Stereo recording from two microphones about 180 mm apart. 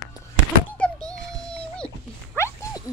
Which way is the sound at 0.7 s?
5° left (ahead or behind).